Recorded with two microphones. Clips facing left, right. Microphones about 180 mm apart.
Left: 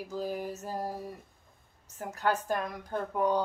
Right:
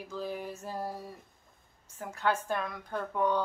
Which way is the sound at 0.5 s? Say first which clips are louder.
Left 2 dB; 40° left (ahead or behind).